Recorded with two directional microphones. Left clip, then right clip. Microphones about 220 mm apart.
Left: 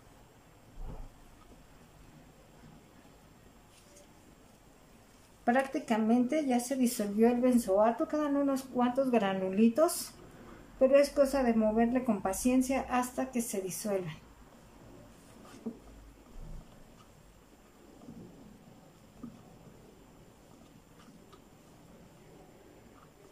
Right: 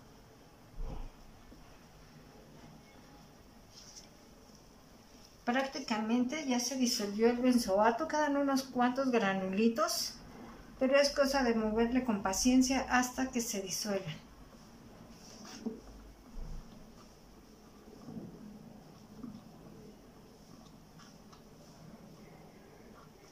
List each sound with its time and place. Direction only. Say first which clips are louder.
5.4 s speech: left 4 dB; 30° left (ahead or behind)